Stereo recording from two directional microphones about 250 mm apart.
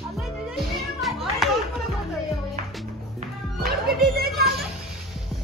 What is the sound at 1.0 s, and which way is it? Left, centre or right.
Children playing, centre.